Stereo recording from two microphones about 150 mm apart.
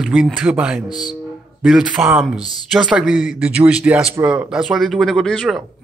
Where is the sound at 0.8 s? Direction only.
25° left (ahead or behind).